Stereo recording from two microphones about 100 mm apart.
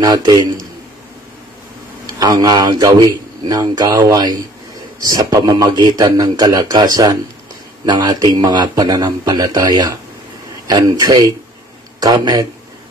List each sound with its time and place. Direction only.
0.0 s speech: 40° right (ahead or behind)
2.1 s a man's voice: 40° right (ahead or behind)